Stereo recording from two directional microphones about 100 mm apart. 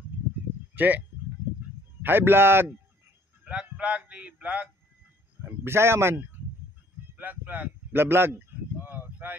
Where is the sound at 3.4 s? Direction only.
10° right (ahead or behind).